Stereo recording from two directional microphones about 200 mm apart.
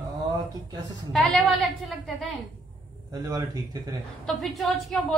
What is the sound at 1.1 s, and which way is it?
Speech, centre (ahead or behind).